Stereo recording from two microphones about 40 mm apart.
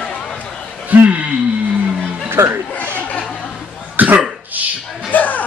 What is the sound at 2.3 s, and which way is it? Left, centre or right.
Music, right.